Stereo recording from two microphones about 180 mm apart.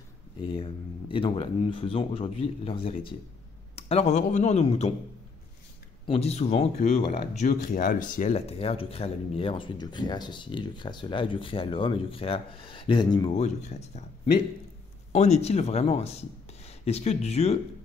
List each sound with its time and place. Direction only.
0.4 s speech: 30° left (ahead or behind)
6.0 s speech: 35° left (ahead or behind)
13.4 s speech: 40° left (ahead or behind)